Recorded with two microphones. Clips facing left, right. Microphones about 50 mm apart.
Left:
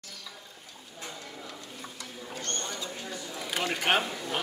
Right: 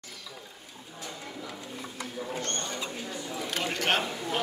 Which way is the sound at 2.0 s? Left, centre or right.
Right.